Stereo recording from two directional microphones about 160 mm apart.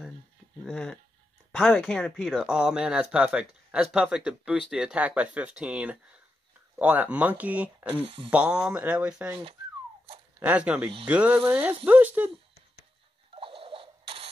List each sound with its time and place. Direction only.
0.7 s speech: 5° left (ahead or behind)
10.4 s speech: 10° right (ahead or behind)
13.3 s a sound: 35° right (ahead or behind)